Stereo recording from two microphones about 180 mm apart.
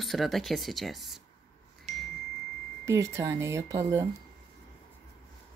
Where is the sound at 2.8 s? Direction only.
15° right (ahead or behind).